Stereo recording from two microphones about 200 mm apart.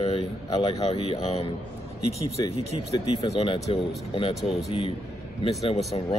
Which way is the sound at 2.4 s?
20° left (ahead or behind).